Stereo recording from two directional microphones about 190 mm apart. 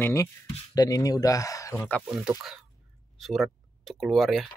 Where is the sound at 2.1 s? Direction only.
Centre (ahead or behind).